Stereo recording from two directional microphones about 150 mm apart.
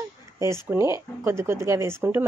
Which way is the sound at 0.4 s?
20° right (ahead or behind).